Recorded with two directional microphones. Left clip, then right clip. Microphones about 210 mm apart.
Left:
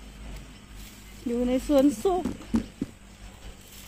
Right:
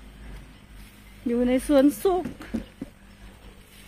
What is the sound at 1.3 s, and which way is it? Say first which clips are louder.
Speech: right 3 dB; 20° right (ahead or behind).